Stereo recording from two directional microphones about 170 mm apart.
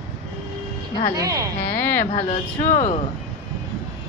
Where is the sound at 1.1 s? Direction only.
20° right (ahead or behind).